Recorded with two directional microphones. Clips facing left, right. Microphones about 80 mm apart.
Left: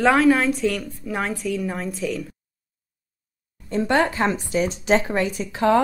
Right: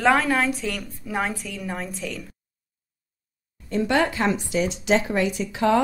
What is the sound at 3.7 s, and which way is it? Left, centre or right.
Speech, left.